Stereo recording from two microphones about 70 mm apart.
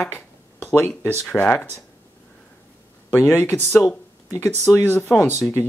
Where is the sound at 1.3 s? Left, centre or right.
Left.